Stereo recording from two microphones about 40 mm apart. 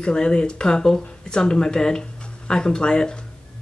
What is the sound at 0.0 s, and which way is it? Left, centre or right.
Speech, left.